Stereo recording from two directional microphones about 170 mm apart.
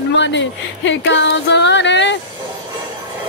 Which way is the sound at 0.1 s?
90° left.